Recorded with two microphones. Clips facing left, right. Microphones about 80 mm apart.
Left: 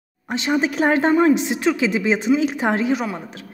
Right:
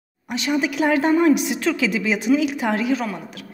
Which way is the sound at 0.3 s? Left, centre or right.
Left.